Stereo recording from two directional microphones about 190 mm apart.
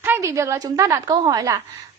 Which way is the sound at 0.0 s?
15° right (ahead or behind).